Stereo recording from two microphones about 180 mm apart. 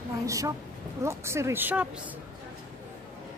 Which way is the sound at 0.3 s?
20° right (ahead or behind).